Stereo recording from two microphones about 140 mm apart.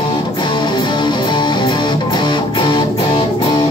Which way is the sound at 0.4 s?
30° left (ahead or behind).